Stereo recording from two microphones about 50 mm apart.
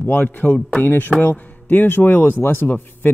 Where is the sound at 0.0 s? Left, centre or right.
Left.